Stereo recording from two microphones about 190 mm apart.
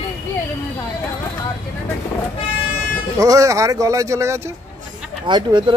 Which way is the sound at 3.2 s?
15° right (ahead or behind).